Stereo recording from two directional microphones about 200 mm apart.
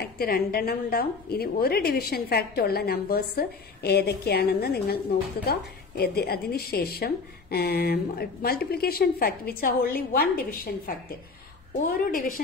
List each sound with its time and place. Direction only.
0.0 s a woman's voice: 50° left (ahead or behind)